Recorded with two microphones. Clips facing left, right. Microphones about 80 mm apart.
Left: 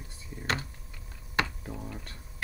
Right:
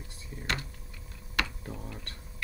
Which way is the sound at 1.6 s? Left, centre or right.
Centre.